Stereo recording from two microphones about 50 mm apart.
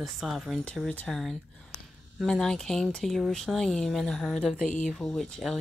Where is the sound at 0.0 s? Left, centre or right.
Centre.